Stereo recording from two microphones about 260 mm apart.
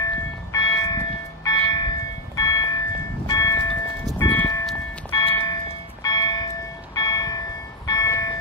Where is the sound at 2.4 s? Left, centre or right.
Centre.